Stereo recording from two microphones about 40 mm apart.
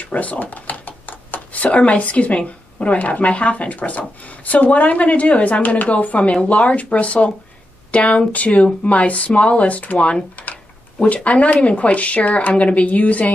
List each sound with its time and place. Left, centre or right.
0.0 s a woman's voice: left
10.3 s computer keyboard: left
11.2 s a woman's voice: left